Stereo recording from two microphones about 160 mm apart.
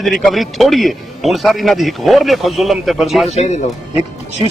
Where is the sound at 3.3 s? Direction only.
45° left (ahead or behind).